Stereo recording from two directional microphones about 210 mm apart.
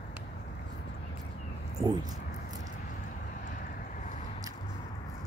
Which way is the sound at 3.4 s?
40° left (ahead or behind).